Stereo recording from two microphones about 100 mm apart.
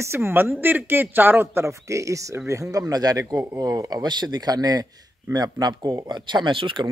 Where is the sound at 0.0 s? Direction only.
25° right (ahead or behind).